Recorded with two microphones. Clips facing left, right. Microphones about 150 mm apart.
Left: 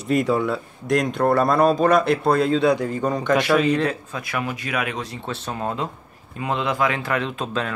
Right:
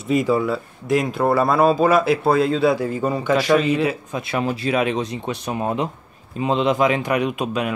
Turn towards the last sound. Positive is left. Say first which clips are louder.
# right 4 dB
turn(degrees=-15)  # may be behind; listen again after turning